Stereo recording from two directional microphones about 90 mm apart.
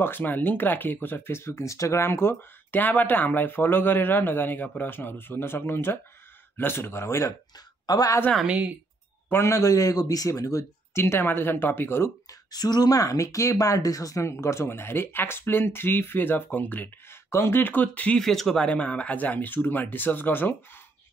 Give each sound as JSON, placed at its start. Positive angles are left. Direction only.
{"t": 0.0, "sound": "speech", "side_deg": 20}
{"t": 7.8, "sound": "a woman's voice", "side_deg": 45}
{"t": 9.3, "sound": "a man's voice", "side_deg": 35}
{"t": 12.3, "sound": "speech", "side_deg": 50}
{"t": 18.2, "sound": "speech", "side_deg": 5}